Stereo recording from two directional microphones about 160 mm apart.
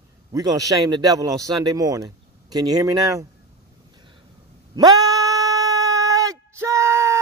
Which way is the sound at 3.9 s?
25° right (ahead or behind).